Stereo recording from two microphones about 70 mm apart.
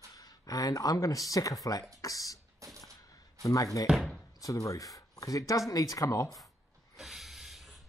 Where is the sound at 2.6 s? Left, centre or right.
Right.